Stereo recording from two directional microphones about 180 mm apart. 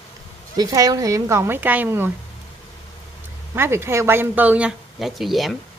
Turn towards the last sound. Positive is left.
turn(degrees=0)  # may be behind; listen again after turning